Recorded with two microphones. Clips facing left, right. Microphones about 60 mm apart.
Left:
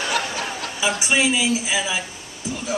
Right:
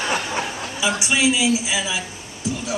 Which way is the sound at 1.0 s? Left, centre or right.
Centre.